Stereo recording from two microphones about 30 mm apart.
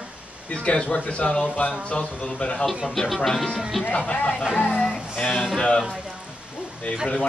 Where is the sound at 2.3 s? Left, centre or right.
Left.